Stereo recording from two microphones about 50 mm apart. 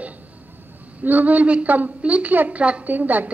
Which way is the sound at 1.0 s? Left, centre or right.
Right.